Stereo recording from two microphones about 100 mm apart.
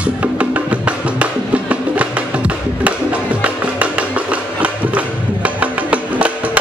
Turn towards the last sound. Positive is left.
turn(degrees=-15)  # may be behind; listen again after turning